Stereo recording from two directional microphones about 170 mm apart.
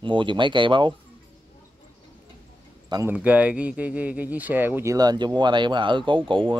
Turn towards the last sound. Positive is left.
turn(degrees=-30)  # may be behind; listen again after turning